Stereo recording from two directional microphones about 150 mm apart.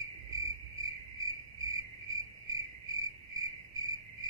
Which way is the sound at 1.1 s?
20° right (ahead or behind).